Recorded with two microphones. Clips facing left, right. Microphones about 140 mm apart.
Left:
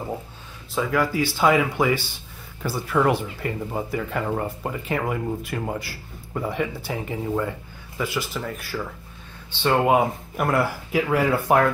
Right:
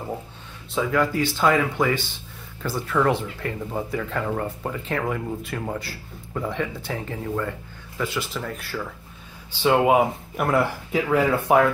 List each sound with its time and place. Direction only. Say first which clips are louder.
0.7 s speech: even; 5° left (ahead or behind)
8.0 s speech: left 1 dB; centre (ahead or behind)